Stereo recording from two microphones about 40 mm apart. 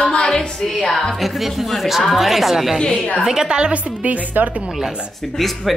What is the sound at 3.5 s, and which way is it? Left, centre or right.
Speech, right.